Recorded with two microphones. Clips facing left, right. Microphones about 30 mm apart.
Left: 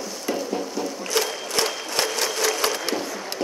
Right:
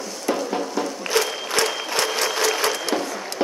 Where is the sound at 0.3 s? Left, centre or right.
Centre.